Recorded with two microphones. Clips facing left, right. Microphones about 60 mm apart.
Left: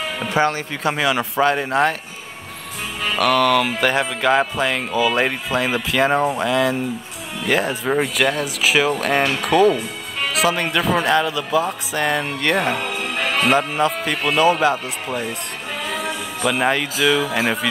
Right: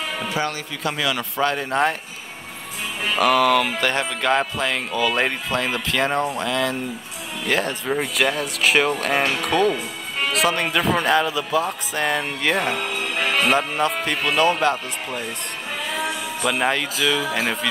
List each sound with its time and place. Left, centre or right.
0.3 s speech: left
1.4 s speech: centre
3.2 s speech: centre
16.4 s speech: centre